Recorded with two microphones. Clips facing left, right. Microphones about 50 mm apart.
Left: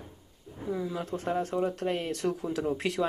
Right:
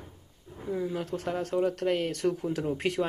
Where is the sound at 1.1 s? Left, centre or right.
Centre.